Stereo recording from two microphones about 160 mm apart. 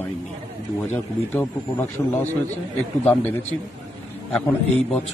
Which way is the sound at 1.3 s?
10° left (ahead or behind).